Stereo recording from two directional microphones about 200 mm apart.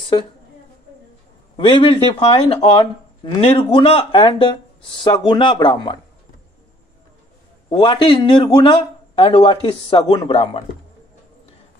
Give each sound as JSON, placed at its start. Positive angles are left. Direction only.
{"t": 1.6, "sound": "a man's voice", "side_deg": 25}
{"t": 7.7, "sound": "a man's voice", "side_deg": 25}